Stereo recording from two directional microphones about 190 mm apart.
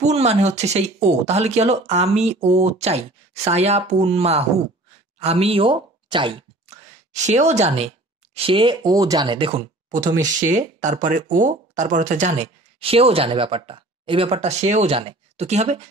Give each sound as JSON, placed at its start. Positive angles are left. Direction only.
{"t": 0.0, "sound": "speech", "side_deg": -35}
{"t": 7.2, "sound": "speech", "side_deg": -35}
{"t": 10.5, "sound": "speech", "side_deg": -40}